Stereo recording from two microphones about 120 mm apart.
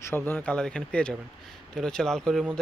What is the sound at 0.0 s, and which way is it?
Speech, 15° left (ahead or behind).